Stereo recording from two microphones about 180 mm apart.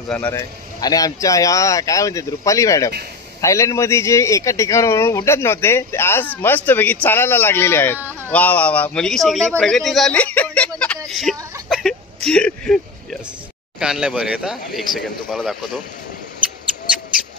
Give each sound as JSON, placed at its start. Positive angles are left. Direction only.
{"t": 0.1, "sound": "a man's voice", "side_deg": 10}
{"t": 11.1, "sound": "a sound", "side_deg": 0}
{"t": 11.7, "sound": "whimper", "side_deg": 0}
{"t": 13.7, "sound": "a man's voice", "side_deg": -5}